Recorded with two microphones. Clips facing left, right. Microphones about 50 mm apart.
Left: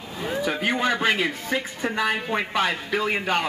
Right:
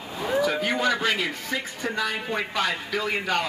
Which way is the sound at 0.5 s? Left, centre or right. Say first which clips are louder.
Left 1 dB; left.